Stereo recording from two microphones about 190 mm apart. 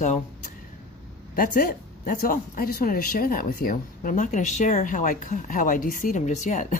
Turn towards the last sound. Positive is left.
turn(degrees=40)  # may be behind; listen again after turning